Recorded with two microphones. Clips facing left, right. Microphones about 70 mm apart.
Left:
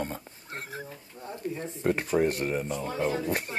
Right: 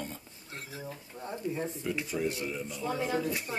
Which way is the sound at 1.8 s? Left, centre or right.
Left.